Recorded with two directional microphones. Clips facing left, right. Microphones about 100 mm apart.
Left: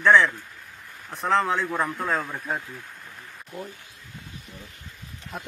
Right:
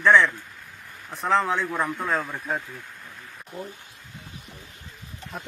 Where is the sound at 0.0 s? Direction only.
Centre (ahead or behind).